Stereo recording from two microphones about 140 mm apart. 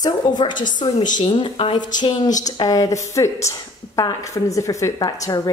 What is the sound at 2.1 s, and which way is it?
Speech, 60° left (ahead or behind).